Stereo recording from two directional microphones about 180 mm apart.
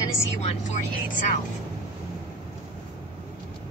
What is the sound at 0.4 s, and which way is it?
Speech, 40° left (ahead or behind).